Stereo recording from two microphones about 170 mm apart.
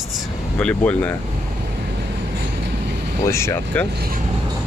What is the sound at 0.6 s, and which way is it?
Speech, 5° left (ahead or behind).